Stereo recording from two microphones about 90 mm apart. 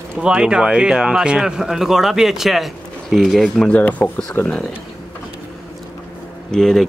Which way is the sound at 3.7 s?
15° left (ahead or behind).